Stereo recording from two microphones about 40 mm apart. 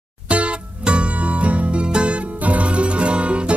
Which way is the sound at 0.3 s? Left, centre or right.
Right.